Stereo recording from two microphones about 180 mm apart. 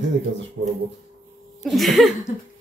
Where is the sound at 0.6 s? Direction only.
65° right (ahead or behind).